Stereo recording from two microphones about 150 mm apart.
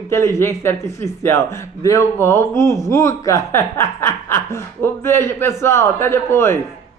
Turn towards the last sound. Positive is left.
turn(degrees=15)  # may be behind; listen again after turning